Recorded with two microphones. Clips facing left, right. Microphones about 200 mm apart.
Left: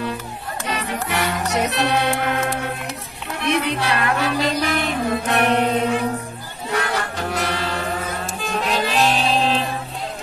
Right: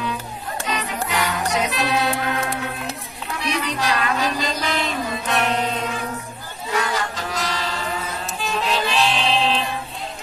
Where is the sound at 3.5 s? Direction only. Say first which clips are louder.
Left 3 dB; 60° left (ahead or behind).